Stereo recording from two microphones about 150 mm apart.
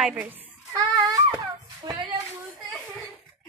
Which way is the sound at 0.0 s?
10° right (ahead or behind).